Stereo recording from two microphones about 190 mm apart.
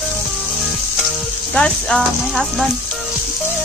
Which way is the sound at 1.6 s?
5° left (ahead or behind).